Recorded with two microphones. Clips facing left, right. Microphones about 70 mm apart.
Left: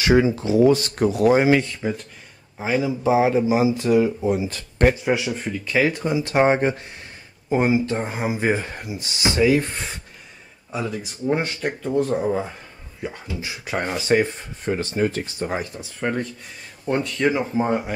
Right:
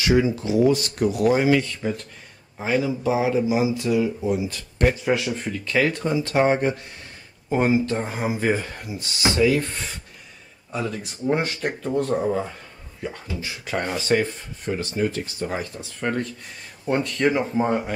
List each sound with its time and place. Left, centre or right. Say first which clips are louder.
0.0 s speech: left 2 dB; left
0.4 s speech: left 3 dB; left
2.6 s speech: left 1 dB; centre
3.2 s speech: left 3 dB; left
5.0 s speech: left 1 dB; centre
6.3 s speech: left 2 dB; left
7.4 s speech: left 1 dB; centre
7.9 s speech: left 1 dB; centre
10.7 s speech: left 1 dB; centre
13.0 s speech: left 1 dB; centre
14.7 s speech: left 2 dB; left
15.6 s speech: left 1 dB; centre